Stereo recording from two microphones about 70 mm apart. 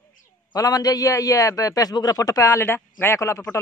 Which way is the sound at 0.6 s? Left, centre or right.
Left.